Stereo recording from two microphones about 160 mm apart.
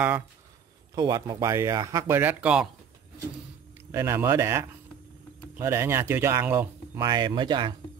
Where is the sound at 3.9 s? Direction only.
15° right (ahead or behind).